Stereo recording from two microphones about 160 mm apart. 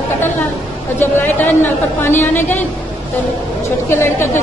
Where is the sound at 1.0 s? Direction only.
15° left (ahead or behind).